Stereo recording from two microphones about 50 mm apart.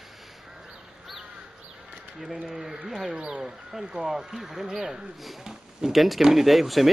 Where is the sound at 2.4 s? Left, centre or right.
Centre.